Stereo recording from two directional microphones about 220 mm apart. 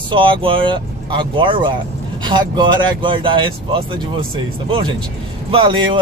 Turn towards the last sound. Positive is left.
turn(degrees=-20)  # may be behind; listen again after turning